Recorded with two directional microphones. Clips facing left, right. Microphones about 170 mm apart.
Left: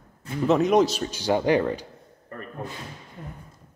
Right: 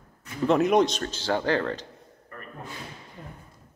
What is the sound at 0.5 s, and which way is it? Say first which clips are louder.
Speech: left 1 dB; centre (ahead or behind).